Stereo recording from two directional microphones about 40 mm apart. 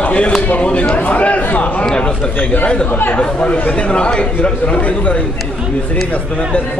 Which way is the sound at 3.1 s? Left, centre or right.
Left.